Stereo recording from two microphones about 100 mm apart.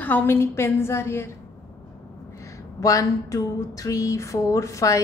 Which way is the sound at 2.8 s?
35° left (ahead or behind).